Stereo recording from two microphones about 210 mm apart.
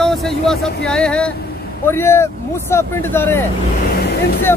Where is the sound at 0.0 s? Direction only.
Centre (ahead or behind).